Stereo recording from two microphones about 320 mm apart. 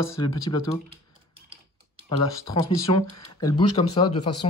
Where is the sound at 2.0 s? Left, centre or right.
Centre.